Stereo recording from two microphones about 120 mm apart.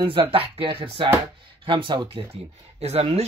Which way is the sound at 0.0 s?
45° right (ahead or behind).